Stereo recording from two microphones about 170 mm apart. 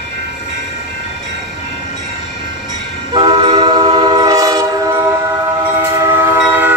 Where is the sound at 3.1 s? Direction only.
30° right (ahead or behind); by 6.7 s 15° right (ahead or behind).